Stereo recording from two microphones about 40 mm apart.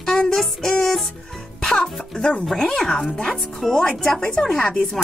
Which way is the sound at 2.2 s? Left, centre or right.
Left.